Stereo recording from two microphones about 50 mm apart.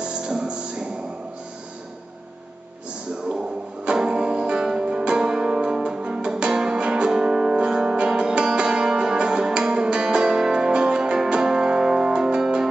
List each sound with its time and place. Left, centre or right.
0.0 s music: centre
3.3 s music: centre